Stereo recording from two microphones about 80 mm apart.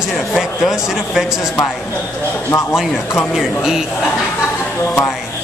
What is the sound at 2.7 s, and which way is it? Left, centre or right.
A man's voice, centre.